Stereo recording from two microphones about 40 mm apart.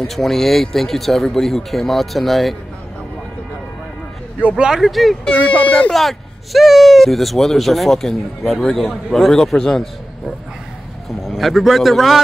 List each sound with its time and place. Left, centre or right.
0.1 s speech: centre
4.6 s speech: centre
5.4 s speech: left
5.9 s a man's voice: centre
11.2 s speech: centre